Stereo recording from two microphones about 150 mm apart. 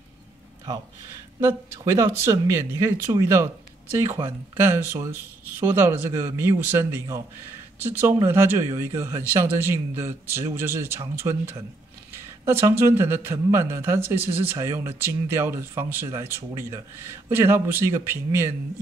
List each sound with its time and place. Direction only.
1.4 s a man's voice: 15° right (ahead or behind)